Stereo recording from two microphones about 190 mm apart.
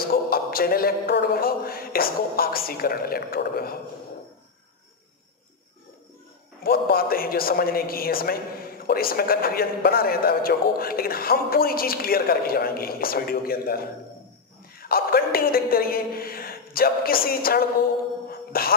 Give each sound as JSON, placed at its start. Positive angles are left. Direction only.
{"t": 0.0, "sound": "a man's voice", "side_deg": 50}
{"t": 6.6, "sound": "a man's voice", "side_deg": 50}
{"t": 18.3, "sound": "a sound", "side_deg": 50}